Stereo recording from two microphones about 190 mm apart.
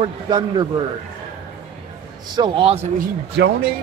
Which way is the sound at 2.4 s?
30° right (ahead or behind).